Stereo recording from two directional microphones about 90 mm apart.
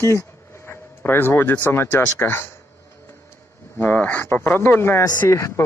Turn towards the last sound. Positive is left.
turn(degrees=30)  # may be behind; listen again after turning